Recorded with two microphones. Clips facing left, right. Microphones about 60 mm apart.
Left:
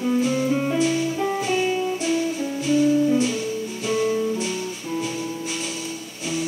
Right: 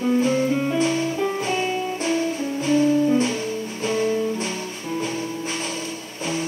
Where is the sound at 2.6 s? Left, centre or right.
Right.